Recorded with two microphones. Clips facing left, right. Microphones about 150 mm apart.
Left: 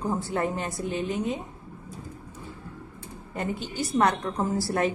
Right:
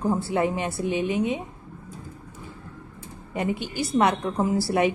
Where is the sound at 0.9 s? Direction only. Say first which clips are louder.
Right 4 dB; 90° right.